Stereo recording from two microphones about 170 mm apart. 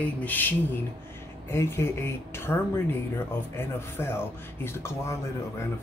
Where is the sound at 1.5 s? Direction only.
15° left (ahead or behind).